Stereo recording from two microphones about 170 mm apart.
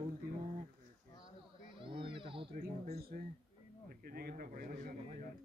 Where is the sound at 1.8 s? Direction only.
30° right (ahead or behind).